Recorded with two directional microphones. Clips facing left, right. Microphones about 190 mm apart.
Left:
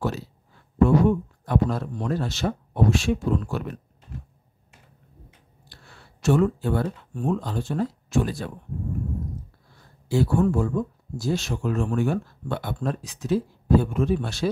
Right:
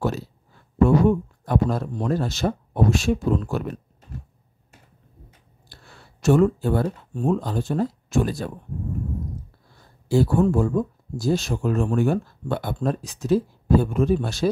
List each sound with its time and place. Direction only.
0.8 s speech: 45° right (ahead or behind)
6.2 s speech: 45° right (ahead or behind)
10.0 s speech: 35° right (ahead or behind)